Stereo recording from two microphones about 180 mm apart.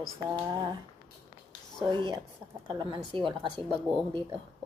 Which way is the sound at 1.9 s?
25° right (ahead or behind).